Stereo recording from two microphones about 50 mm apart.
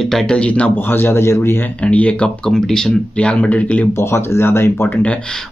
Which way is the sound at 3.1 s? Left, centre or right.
Left.